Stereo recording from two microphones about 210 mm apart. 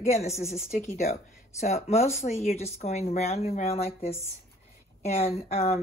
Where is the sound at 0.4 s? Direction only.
30° left (ahead or behind).